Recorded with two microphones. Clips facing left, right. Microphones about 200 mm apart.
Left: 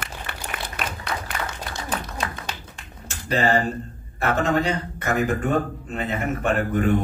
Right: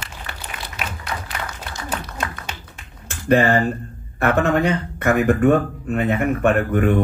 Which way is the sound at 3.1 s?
55° right (ahead or behind).